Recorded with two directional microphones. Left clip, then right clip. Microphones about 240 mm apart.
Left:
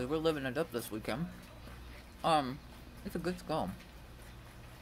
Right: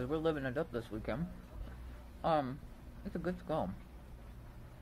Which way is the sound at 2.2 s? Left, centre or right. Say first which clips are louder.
Left 3 dB; centre.